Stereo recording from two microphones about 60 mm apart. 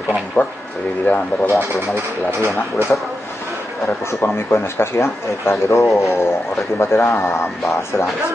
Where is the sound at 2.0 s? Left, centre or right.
Right.